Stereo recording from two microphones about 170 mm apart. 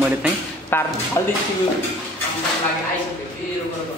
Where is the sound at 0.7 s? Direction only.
15° left (ahead or behind).